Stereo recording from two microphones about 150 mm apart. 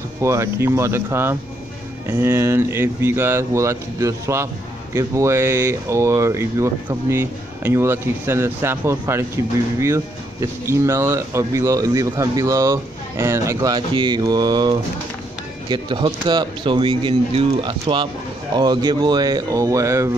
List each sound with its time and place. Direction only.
0.2 s speech: 20° right (ahead or behind)